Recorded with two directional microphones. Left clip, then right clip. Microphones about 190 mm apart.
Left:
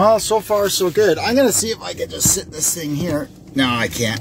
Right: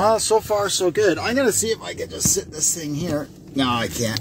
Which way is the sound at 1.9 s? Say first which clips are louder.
Left 4 dB; 20° right (ahead or behind).